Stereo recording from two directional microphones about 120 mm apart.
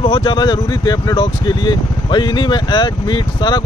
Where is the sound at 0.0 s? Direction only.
40° left (ahead or behind).